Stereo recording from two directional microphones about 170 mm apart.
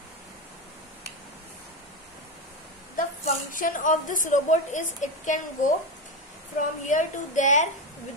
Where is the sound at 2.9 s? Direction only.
50° left (ahead or behind).